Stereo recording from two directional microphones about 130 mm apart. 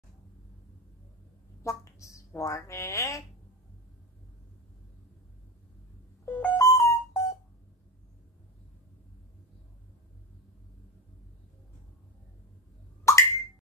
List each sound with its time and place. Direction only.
1.6 s speech: 25° left (ahead or behind)
6.2 s a sound: 15° left (ahead or behind)
6.6 s music: 25° left (ahead or behind)
13.1 s plop: 20° left (ahead or behind)